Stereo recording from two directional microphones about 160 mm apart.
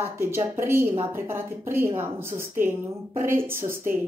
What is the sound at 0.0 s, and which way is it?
A woman's voice, 15° right (ahead or behind).